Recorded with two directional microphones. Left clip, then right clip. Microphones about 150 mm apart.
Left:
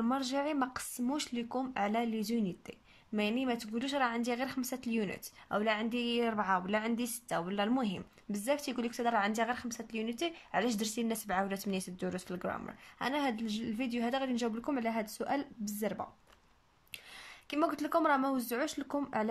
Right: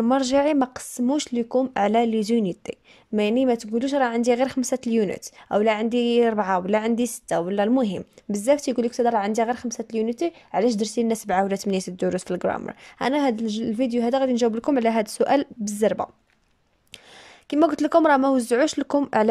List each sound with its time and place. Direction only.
0.0 s a woman's voice: 50° right (ahead or behind)
1.8 s a woman's voice: 55° right (ahead or behind)
17.5 s a woman's voice: 55° right (ahead or behind)